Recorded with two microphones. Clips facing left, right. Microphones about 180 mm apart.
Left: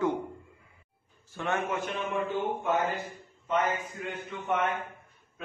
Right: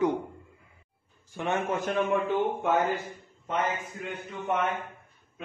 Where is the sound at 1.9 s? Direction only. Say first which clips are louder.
Right 9 dB; 70° right (ahead or behind).